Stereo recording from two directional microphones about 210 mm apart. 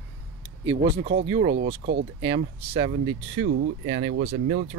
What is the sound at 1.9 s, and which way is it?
Speech, 50° right (ahead or behind).